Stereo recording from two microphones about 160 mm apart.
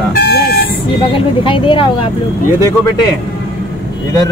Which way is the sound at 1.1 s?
35° left (ahead or behind).